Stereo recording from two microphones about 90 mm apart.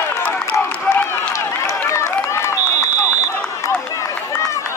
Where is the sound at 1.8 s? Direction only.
30° left (ahead or behind).